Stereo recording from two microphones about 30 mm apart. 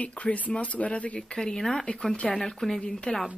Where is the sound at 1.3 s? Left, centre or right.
Left.